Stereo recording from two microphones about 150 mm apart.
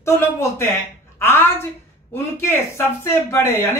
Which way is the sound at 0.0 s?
20° left (ahead or behind).